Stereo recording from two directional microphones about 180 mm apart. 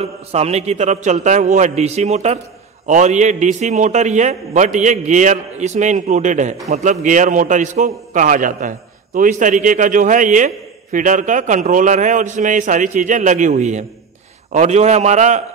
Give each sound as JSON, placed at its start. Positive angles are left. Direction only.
{"t": 0.0, "sound": "a man's voice", "side_deg": -35}